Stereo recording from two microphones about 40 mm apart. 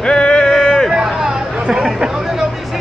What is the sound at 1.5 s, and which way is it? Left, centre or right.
Chatter, right.